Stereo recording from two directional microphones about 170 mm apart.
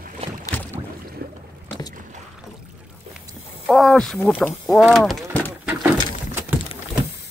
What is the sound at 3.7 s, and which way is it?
Speech, centre (ahead or behind).